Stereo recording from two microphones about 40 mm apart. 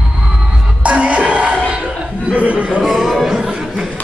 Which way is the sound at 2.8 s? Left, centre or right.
Centre.